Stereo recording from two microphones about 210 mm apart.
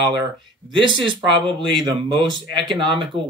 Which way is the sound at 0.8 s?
25° right (ahead or behind).